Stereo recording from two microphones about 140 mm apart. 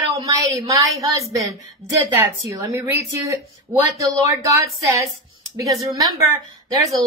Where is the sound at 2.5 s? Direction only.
20° right (ahead or behind).